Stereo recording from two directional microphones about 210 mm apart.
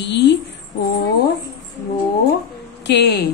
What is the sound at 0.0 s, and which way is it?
Speech, 55° left (ahead or behind).